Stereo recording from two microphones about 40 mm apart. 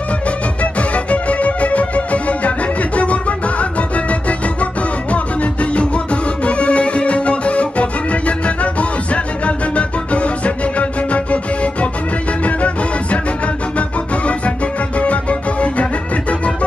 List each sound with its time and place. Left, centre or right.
0.6 s music: left